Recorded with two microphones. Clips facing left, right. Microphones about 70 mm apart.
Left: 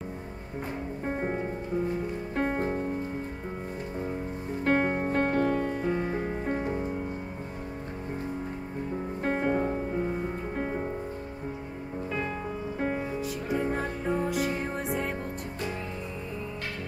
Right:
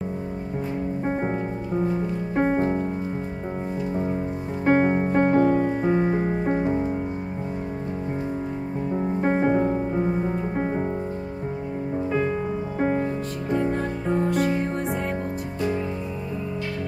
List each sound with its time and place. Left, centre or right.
1.0 s music: centre
4.6 s music: centre
8.9 s music: right
12.7 s music: centre
13.5 s music: centre